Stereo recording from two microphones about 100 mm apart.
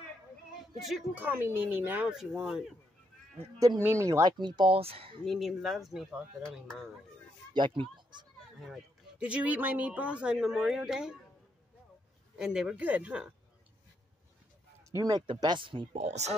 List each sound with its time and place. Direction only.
1.1 s speech: 20° right (ahead or behind)
2.0 s speech: 10° right (ahead or behind)
3.5 s speech: 35° right (ahead or behind)
4.3 s speech: 45° right (ahead or behind)
4.6 s speech: 75° right (ahead or behind)
5.2 s speech: centre (ahead or behind)
7.5 s speech: 55° right (ahead or behind)
8.6 s speech: 10° right (ahead or behind)
12.4 s speech: 5° right (ahead or behind)
12.7 s speech: 15° right (ahead or behind)
14.9 s speech: 35° right (ahead or behind)
15.2 s speech: 55° right (ahead or behind); by 16.3 s 90° right